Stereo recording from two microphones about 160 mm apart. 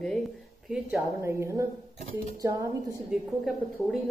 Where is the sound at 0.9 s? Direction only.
15° right (ahead or behind).